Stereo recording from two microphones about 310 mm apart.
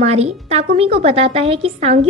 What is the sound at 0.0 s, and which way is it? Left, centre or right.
A woman's voice, right.